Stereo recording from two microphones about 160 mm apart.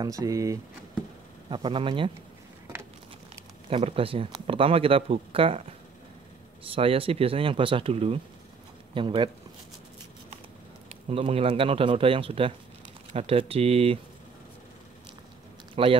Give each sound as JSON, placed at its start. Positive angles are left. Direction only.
{"t": 0.0, "sound": "speech", "side_deg": -20}
{"t": 1.5, "sound": "speech", "side_deg": -30}
{"t": 3.7, "sound": "speech", "side_deg": -35}
{"t": 6.6, "sound": "speech", "side_deg": -35}
{"t": 10.9, "sound": "speech", "side_deg": -35}
{"t": 15.7, "sound": "speech", "side_deg": -35}